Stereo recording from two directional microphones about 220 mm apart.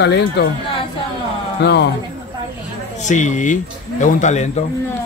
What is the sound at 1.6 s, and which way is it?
Speech, 50° left (ahead or behind).